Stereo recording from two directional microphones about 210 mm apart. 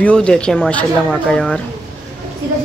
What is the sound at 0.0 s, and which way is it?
Speech, 5° left (ahead or behind).